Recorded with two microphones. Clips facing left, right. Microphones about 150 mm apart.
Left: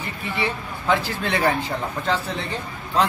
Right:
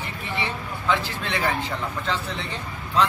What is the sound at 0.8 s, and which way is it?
Speech, 45° left (ahead or behind).